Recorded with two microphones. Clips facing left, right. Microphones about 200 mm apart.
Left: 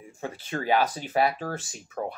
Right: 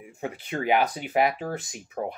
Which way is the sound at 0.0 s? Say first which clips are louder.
Right 2 dB; 15° right (ahead or behind).